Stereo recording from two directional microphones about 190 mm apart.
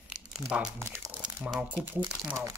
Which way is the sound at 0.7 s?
10° right (ahead or behind).